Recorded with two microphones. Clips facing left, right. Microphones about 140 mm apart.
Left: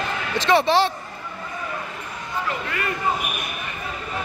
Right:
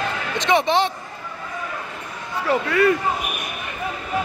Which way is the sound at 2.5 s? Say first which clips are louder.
Right 13 dB; 80° right.